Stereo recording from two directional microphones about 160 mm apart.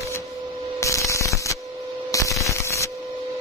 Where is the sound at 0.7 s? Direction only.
20° left (ahead or behind).